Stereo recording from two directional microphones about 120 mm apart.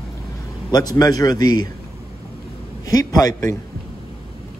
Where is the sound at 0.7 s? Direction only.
35° left (ahead or behind).